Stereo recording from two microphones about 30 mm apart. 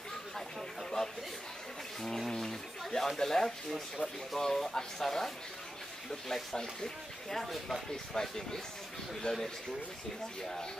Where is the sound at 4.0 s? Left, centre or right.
Right.